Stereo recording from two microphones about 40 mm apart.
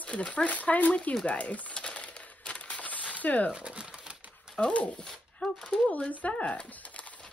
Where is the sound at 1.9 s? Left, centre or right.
Left.